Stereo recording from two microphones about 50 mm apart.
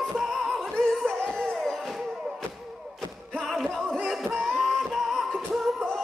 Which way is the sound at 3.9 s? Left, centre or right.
Centre.